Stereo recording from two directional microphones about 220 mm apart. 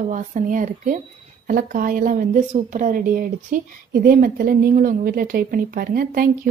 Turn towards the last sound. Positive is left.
turn(degrees=-40)  # may be behind; listen again after turning